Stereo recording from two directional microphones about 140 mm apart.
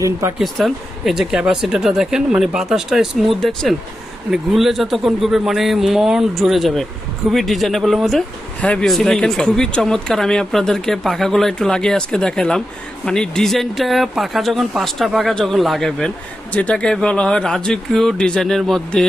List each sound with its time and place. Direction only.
0.4 s a man's voice: centre (ahead or behind)